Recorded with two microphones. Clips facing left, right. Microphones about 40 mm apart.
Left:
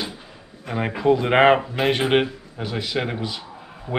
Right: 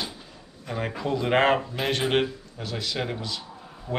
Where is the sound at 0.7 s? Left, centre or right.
Left.